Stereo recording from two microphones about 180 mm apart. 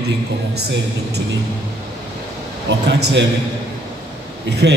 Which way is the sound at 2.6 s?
75° right (ahead or behind).